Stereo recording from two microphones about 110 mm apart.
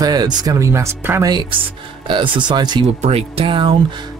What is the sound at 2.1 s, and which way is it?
Speech, 45° right (ahead or behind).